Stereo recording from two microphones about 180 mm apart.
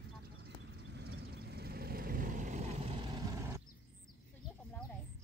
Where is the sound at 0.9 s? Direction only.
70° right (ahead or behind); by 3.6 s 20° right (ahead or behind).